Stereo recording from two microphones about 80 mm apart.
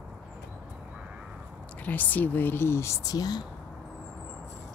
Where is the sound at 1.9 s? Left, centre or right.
Left.